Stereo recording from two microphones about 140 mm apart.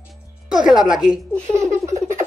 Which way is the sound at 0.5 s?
5° right (ahead or behind).